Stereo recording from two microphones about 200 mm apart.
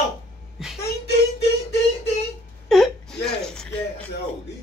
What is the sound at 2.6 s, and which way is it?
Whimper, centre (ahead or behind).